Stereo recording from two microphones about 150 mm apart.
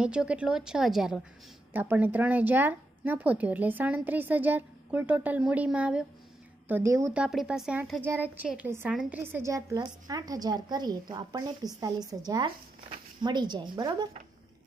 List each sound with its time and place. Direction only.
0.0 s speech: 5° right (ahead or behind)
6.7 s a woman's voice: 20° right (ahead or behind)
7.2 s speech: 5° right (ahead or behind)
8.0 s a woman's voice: 10° right (ahead or behind); by 14.0 s 30° right (ahead or behind)